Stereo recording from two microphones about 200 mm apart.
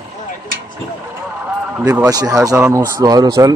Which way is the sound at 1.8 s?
15° right (ahead or behind).